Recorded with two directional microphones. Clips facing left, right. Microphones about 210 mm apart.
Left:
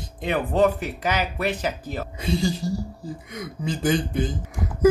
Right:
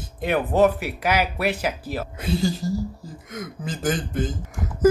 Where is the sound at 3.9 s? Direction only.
Centre (ahead or behind).